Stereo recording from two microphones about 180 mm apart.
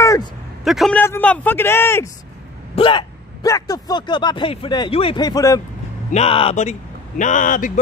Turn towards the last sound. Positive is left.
turn(degrees=45)  # may be behind; listen again after turning